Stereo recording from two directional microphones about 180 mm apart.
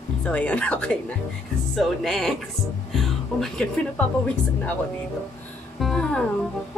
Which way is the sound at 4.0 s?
5° left (ahead or behind).